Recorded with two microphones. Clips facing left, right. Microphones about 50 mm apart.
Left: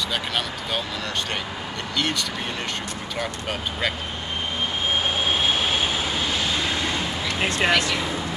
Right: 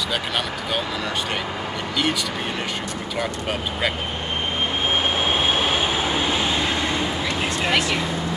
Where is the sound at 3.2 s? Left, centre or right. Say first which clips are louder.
Right 3 dB; centre.